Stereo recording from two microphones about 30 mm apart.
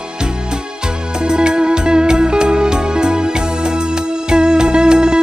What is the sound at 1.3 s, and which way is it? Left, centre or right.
Music, right.